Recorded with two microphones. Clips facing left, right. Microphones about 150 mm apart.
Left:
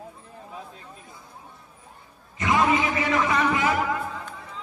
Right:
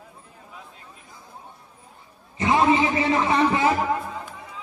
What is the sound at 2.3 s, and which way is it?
A man's voice, 30° right (ahead or behind).